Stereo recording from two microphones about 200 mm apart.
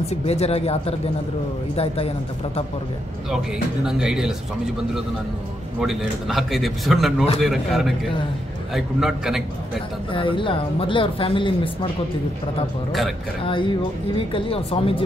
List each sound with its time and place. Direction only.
0.0 s speech: 30° left (ahead or behind)
3.8 s a man's voice: 5° right (ahead or behind)
5.8 s a man's voice: centre (ahead or behind)
10.1 s speech: 25° left (ahead or behind)
13.4 s speech: 25° left (ahead or behind)